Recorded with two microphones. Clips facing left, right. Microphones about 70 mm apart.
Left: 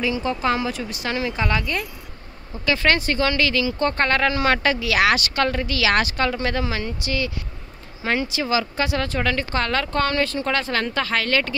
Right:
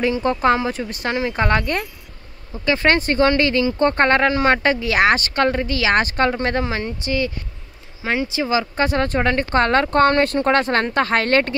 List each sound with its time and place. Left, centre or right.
0.0 s speech: right
2.6 s speech: right
8.0 s speech: centre
8.7 s speech: right